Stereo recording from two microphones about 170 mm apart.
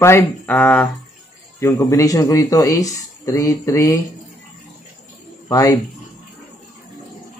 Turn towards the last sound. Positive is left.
turn(degrees=20)  # may be behind; listen again after turning